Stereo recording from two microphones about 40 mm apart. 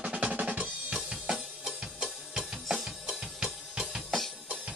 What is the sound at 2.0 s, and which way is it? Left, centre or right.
Music, centre.